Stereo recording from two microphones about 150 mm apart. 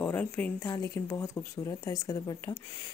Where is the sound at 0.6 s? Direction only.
20° left (ahead or behind).